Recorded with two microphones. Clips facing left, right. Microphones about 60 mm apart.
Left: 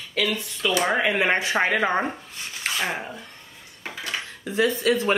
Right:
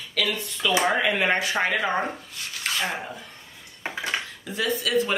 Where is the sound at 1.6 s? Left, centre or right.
Left.